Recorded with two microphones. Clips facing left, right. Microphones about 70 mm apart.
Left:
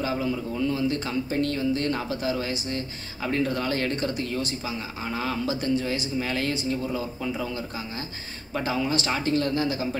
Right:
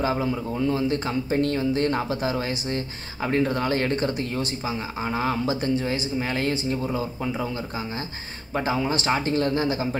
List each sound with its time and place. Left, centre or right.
0.0 s speech: right